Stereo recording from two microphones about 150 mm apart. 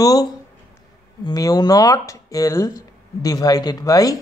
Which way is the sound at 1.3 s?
25° left (ahead or behind).